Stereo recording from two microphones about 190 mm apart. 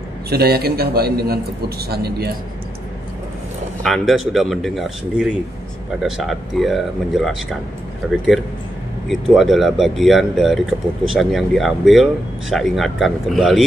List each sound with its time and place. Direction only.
0.3 s a man's voice: 55° right (ahead or behind)
3.8 s speech: centre (ahead or behind)